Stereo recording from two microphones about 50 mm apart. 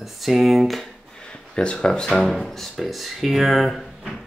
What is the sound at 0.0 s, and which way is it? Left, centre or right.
Speech, centre.